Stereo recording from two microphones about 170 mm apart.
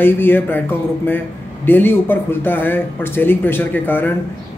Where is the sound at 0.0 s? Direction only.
10° left (ahead or behind).